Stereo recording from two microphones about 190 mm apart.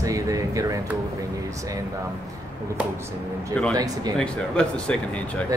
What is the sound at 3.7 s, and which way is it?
Speech, 20° right (ahead or behind).